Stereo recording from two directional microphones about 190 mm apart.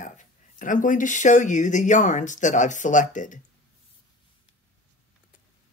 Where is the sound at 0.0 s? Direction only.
45° left (ahead or behind).